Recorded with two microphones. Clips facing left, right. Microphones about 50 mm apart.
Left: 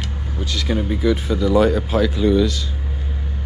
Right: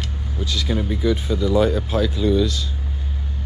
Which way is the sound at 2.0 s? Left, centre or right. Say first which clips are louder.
Left 2 dB; left.